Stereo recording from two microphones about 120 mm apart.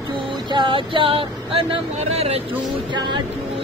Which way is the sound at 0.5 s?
40° right (ahead or behind).